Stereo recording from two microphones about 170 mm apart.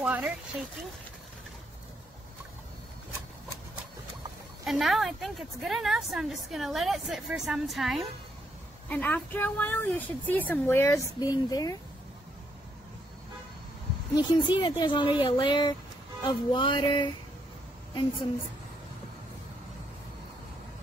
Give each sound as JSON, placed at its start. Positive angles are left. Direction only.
{"t": 0.0, "sound": "speech", "side_deg": -10}
{"t": 4.6, "sound": "a woman's voice", "side_deg": 0}
{"t": 8.8, "sound": "speech", "side_deg": 10}
{"t": 14.1, "sound": "speech", "side_deg": 25}